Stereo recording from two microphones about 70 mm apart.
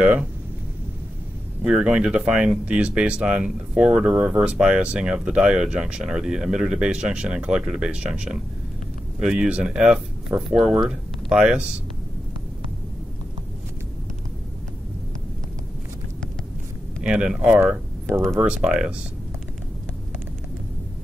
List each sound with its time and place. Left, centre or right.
0.0 s speech: centre
1.6 s speech: centre
17.0 s speech: centre